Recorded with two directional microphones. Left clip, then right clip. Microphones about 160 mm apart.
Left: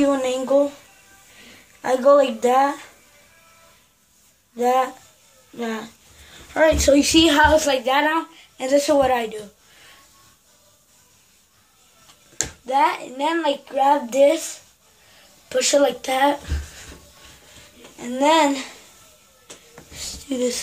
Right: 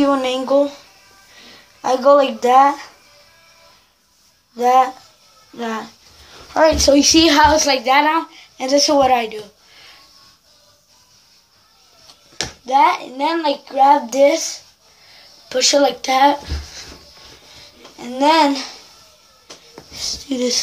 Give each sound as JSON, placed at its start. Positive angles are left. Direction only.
{"t": 0.0, "sound": "a sound", "side_deg": 15}
{"t": 1.8, "sound": "speech", "side_deg": 15}
{"t": 4.6, "sound": "speech", "side_deg": 15}
{"t": 7.1, "sound": "a woman's voice", "side_deg": 0}
{"t": 12.6, "sound": "a woman's voice", "side_deg": 0}
{"t": 17.9, "sound": "a woman's voice", "side_deg": 0}
{"t": 19.9, "sound": "speech", "side_deg": 5}